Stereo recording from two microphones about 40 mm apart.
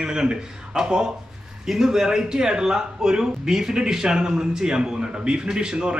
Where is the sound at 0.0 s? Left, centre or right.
Centre.